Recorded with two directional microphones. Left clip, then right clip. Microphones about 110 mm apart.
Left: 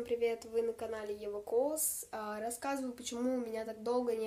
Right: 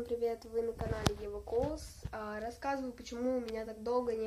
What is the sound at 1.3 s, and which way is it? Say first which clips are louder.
A woman's voice: left 2 dB; 35° left (ahead or behind).